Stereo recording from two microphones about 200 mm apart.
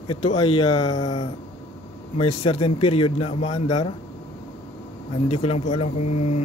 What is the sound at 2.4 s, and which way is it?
Speech, 25° left (ahead or behind).